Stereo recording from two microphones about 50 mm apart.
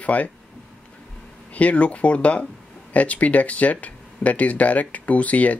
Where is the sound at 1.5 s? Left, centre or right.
Left.